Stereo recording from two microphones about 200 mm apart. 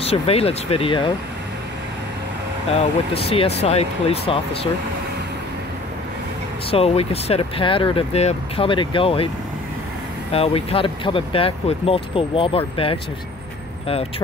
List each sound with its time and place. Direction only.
0.0 s speech: 30° left (ahead or behind)
2.7 s speech: 30° left (ahead or behind)
6.7 s speech: 30° left (ahead or behind)
10.3 s speech: 30° left (ahead or behind)